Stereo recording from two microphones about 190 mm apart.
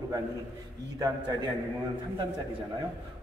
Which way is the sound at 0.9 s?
20° right (ahead or behind).